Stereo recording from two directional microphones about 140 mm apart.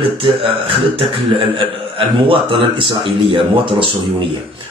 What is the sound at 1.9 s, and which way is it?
A man's voice, 40° right (ahead or behind).